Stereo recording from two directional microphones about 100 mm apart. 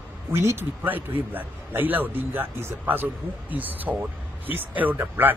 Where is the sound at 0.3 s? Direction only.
25° right (ahead or behind).